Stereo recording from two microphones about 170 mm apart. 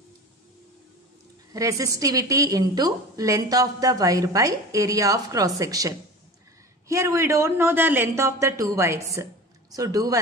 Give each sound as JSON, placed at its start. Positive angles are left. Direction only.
{"t": 1.5, "sound": "a woman's voice", "side_deg": -20}